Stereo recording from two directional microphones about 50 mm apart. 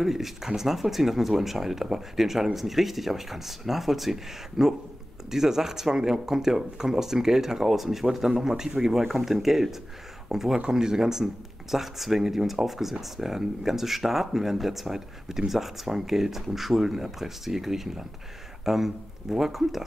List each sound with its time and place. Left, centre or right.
0.0 s speech: centre